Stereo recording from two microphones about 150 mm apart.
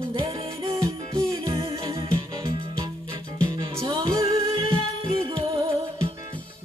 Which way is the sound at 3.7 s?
35° right (ahead or behind).